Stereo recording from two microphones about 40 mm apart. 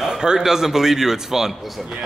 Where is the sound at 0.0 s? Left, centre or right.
Centre.